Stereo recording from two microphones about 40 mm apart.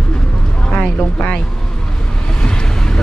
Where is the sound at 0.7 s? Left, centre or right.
Left.